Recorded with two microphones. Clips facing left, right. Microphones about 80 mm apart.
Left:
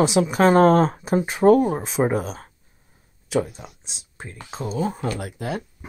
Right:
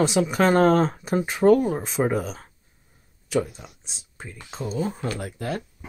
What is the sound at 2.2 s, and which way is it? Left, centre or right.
Speech, left.